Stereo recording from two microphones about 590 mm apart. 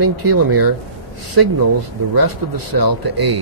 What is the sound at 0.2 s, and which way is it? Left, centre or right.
Speech, right.